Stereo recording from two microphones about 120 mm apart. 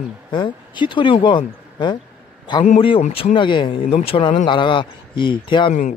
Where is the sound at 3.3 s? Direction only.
45° left (ahead or behind).